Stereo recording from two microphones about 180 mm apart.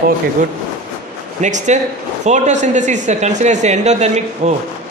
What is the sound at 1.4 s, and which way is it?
Speech, 40° right (ahead or behind).